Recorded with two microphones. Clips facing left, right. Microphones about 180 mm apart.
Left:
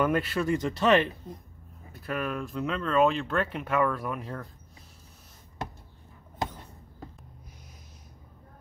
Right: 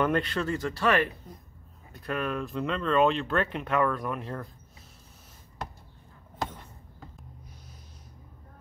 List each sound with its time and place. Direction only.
0.0 s speech: 5° left (ahead or behind)
0.6 s speech: 20° left (ahead or behind)
1.9 s speech: 5° left (ahead or behind)